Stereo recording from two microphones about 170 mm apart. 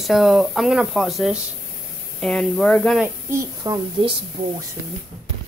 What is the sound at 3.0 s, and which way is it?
A woman's voice, 20° right (ahead or behind).